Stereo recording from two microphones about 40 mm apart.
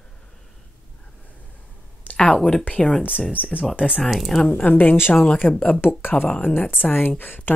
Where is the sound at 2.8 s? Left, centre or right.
Centre.